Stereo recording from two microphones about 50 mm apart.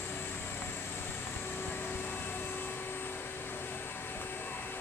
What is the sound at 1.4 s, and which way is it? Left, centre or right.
Vehicle, left.